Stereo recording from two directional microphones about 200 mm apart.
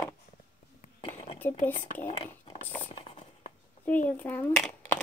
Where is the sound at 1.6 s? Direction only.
40° left (ahead or behind).